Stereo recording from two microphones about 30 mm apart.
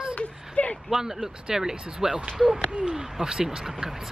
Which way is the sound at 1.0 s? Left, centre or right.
Centre.